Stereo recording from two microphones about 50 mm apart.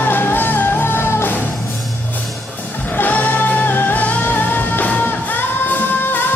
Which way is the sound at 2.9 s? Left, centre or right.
Left.